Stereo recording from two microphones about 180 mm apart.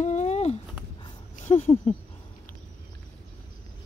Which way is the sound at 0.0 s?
40° left (ahead or behind).